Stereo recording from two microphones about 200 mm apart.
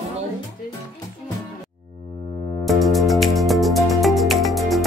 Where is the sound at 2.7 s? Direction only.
Centre (ahead or behind).